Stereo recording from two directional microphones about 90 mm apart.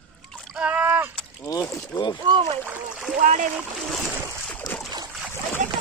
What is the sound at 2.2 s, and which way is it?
Speech, 85° right.